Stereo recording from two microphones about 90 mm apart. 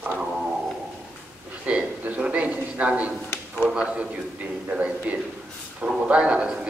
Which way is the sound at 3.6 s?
10° right (ahead or behind).